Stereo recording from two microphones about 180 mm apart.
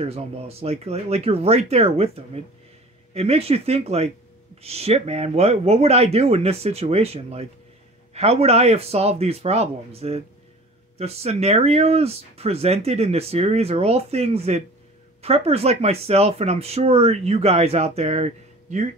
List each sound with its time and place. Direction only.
0.0 s speech: 35° right (ahead or behind)